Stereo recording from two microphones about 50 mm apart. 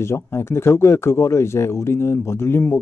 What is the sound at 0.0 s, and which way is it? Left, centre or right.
Speech, left.